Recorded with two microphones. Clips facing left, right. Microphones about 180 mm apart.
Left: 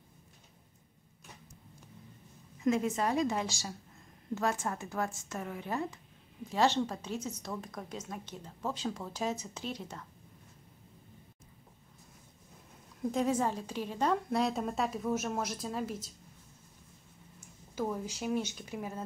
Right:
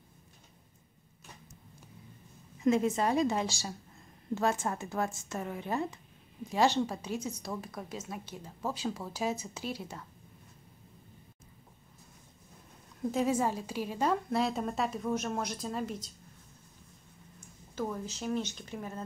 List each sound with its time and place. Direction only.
2.6 s a woman's voice: 25° right (ahead or behind)
6.5 s a woman's voice: 10° right (ahead or behind)
13.0 s a woman's voice: 5° right (ahead or behind)
17.4 s speech: 10° left (ahead or behind)